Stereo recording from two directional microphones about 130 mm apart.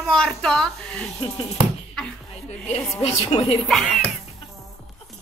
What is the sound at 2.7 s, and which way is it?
Speech, 55° left (ahead or behind).